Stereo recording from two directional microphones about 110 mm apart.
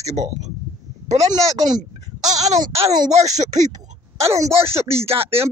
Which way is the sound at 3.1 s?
90° right.